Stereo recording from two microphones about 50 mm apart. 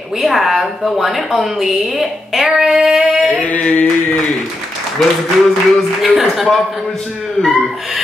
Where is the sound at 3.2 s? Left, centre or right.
Left.